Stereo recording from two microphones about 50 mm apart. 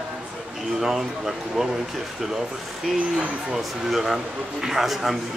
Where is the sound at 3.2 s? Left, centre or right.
Right.